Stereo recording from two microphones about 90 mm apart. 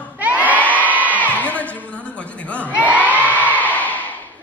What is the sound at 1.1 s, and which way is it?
Music, 15° left (ahead or behind).